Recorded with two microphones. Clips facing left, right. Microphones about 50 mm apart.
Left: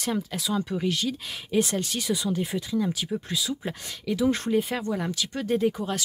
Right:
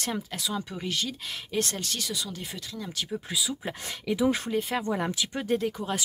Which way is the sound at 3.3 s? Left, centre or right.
Centre.